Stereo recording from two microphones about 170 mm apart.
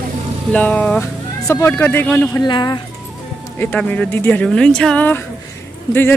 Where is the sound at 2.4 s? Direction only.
25° left (ahead or behind).